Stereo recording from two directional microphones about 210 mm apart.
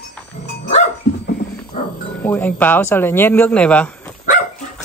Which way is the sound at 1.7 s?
30° left (ahead or behind).